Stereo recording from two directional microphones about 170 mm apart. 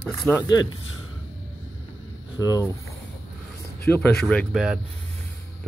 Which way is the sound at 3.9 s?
5° left (ahead or behind).